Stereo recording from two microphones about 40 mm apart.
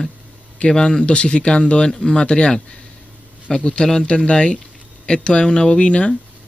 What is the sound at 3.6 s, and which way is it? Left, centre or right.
Speech, left.